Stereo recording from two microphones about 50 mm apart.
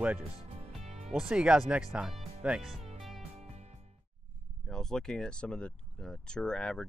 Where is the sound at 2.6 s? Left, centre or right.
Centre.